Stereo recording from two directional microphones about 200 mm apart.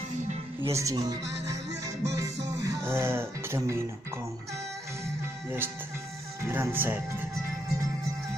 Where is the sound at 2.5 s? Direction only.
15° right (ahead or behind).